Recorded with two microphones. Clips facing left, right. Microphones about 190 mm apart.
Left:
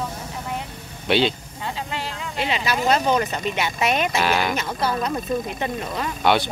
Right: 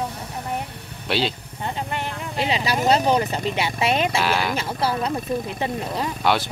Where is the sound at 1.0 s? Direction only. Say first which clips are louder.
Left 4 dB; centre (ahead or behind).